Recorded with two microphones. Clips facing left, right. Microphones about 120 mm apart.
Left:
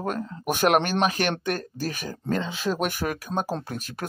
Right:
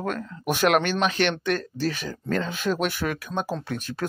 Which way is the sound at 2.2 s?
25° left (ahead or behind).